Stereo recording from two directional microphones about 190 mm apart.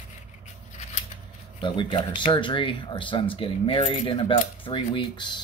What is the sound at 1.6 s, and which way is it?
Speech, 25° left (ahead or behind).